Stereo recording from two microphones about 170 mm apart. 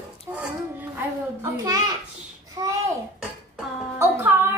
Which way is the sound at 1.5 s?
20° right (ahead or behind).